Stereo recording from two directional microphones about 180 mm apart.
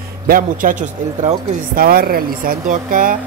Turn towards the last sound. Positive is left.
turn(degrees=-50)  # may be behind; listen again after turning